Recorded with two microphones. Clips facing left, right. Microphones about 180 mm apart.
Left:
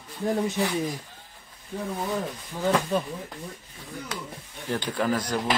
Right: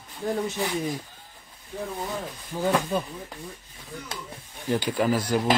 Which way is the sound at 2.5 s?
5° right (ahead or behind).